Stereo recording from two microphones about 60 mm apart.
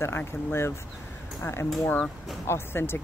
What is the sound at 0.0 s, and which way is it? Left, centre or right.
Speech, left.